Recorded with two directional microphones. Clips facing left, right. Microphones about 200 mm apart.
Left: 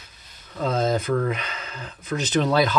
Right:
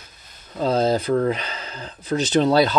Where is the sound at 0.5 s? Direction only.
30° right (ahead or behind).